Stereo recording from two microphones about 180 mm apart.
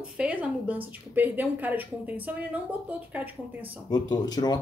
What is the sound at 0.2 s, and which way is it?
A woman's voice, 10° right (ahead or behind).